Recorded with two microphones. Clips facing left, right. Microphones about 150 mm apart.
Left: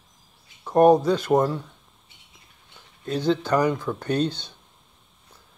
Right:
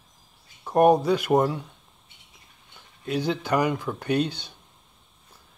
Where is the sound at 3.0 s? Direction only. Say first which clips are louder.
Left 3 dB; 10° right (ahead or behind).